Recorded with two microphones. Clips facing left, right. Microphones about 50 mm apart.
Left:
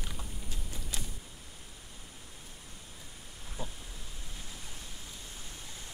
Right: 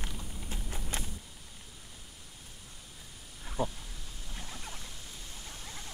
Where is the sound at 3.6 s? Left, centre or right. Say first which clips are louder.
Right 10 dB; right.